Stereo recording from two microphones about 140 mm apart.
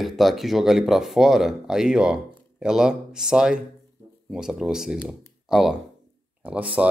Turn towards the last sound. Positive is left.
turn(degrees=-10)  # may be behind; listen again after turning